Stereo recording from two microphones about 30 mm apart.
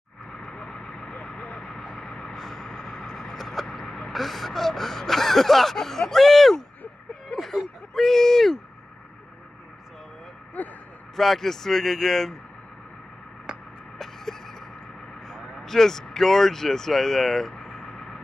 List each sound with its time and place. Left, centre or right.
0.5 s vehicle: left
2.0 s vehicle: centre
4.1 s speech: centre
7.9 s speech: centre
10.6 s speech: left
11.1 s speech: centre
13.9 s a sound: centre
15.2 s speech: centre
17.9 s vehicle: centre